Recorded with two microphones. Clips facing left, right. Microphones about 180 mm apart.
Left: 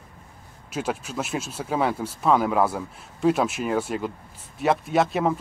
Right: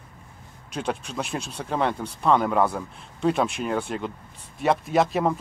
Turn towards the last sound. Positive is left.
turn(degrees=0)  # may be behind; listen again after turning